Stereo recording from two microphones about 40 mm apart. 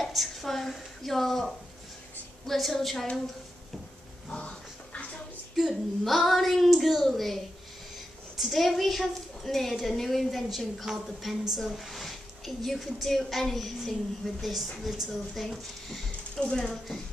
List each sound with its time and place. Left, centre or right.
0.0 s a woman's voice: centre
5.6 s a woman's voice: centre
8.4 s a woman's voice: centre
16.3 s speech: centre
16.7 s a woman's voice: centre